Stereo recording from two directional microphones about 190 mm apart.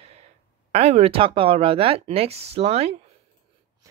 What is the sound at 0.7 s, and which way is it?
Speech, 35° right (ahead or behind).